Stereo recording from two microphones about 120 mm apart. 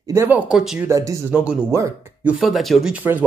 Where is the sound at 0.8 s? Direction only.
25° right (ahead or behind).